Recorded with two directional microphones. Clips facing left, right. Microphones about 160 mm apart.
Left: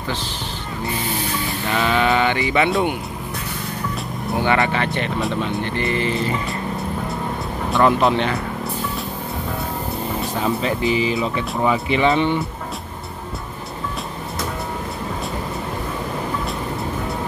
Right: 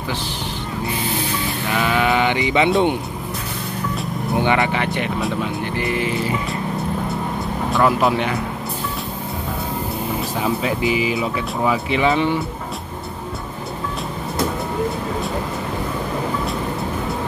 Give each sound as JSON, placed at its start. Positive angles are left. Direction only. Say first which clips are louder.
{"t": 1.7, "sound": "sheep", "louder": "even", "side_deg": -10}
{"t": 4.4, "sound": "speech", "louder": "even", "side_deg": -20}
{"t": 7.7, "sound": "speech", "louder": "left 1 dB", "side_deg": -5}
{"t": 10.4, "sound": "speech", "louder": "even", "side_deg": -5}